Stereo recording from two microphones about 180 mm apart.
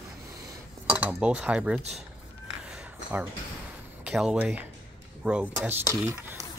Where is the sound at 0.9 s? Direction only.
5° right (ahead or behind).